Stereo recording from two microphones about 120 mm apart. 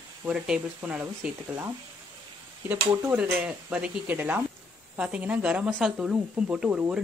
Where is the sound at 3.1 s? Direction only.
10° right (ahead or behind).